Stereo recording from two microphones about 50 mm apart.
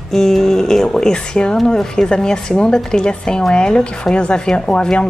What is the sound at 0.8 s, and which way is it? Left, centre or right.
A woman's voice, centre.